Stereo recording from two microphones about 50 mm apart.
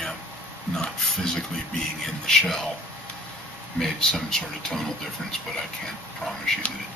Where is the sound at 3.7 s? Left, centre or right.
Centre.